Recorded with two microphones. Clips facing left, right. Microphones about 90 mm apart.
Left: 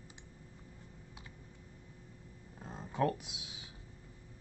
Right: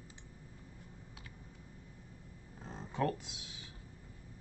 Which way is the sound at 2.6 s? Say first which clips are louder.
Left 2 dB; 10° left (ahead or behind).